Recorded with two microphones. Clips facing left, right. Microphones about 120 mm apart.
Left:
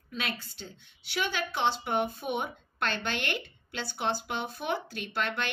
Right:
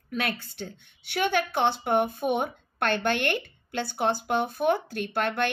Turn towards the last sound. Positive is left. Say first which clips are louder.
# right 6 dB
turn(degrees=-50)  # may be behind; listen again after turning